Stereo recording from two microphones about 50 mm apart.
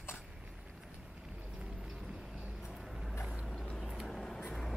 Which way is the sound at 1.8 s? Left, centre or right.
Centre.